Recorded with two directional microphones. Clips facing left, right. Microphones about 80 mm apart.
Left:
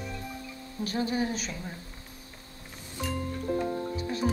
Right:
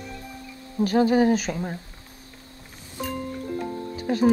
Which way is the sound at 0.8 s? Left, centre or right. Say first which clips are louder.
Right 11 dB; right.